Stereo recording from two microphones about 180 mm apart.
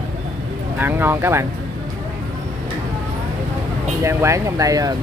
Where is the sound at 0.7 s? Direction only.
10° right (ahead or behind).